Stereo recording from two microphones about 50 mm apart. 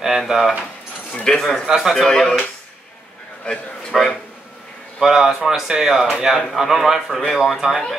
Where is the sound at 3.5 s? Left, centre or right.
Left.